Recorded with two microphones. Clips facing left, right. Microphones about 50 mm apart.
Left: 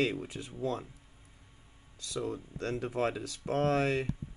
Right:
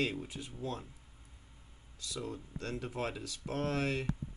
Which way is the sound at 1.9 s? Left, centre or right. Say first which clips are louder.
Left 5 dB; left.